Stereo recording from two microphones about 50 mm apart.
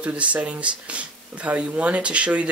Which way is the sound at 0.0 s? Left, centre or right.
Right.